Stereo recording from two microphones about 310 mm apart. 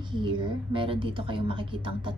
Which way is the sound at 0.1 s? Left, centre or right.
Centre.